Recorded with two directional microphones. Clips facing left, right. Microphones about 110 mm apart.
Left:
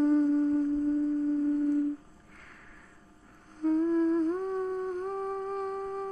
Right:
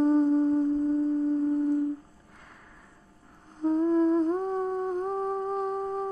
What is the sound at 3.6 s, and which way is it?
Humming, 25° right (ahead or behind).